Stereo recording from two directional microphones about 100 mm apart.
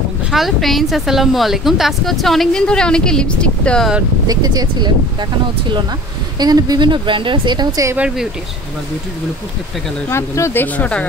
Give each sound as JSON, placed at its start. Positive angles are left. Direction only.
{"t": 0.3, "sound": "speech", "side_deg": 0}
{"t": 4.3, "sound": "speech", "side_deg": -40}
{"t": 6.4, "sound": "speech", "side_deg": -40}
{"t": 10.0, "sound": "speech", "side_deg": 30}